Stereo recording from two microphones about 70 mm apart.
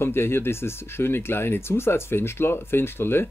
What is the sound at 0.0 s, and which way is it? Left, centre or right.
Speech, left.